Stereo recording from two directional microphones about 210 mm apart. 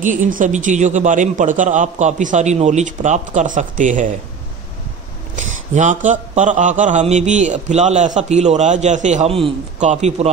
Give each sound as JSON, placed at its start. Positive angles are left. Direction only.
{"t": 0.0, "sound": "speech", "side_deg": -40}
{"t": 5.3, "sound": "speech", "side_deg": -35}